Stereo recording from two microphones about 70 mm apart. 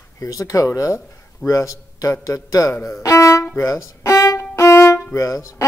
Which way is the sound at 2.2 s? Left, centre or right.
Left.